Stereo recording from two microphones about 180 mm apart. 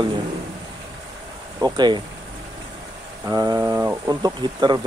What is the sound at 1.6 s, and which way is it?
Speech, 20° right (ahead or behind).